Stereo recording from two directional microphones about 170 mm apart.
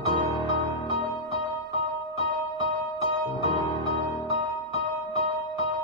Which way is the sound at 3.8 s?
30° right (ahead or behind).